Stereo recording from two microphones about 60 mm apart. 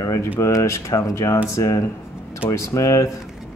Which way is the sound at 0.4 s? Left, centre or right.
Left.